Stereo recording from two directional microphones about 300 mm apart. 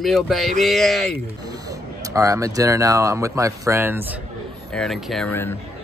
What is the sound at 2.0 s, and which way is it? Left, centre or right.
Speech, centre.